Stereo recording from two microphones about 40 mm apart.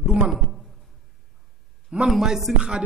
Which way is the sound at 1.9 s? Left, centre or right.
Right.